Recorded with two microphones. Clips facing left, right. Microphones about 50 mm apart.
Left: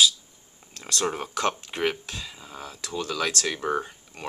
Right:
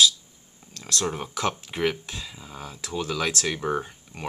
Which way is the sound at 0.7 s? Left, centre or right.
Centre.